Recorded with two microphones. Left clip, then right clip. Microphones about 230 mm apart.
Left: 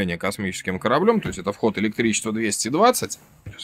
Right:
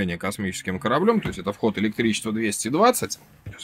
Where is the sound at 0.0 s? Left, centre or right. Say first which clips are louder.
Left 2 dB; centre.